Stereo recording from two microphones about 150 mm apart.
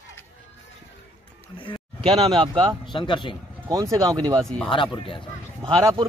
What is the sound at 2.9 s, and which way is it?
Speech, 30° left (ahead or behind).